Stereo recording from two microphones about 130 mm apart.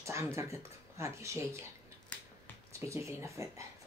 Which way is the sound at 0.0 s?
20° right (ahead or behind).